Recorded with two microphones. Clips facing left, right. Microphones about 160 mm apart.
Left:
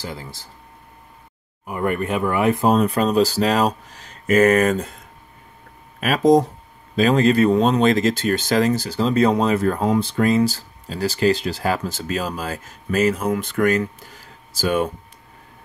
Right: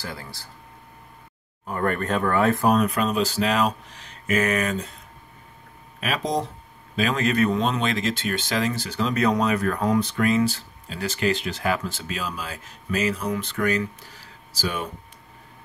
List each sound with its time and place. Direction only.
0.0 s speech: 20° left (ahead or behind)
1.7 s speech: 10° left (ahead or behind); by 4.9 s 45° left (ahead or behind)
5.9 s speech: 45° left (ahead or behind)
7.0 s speech: 35° left (ahead or behind); by 14.9 s 50° left (ahead or behind)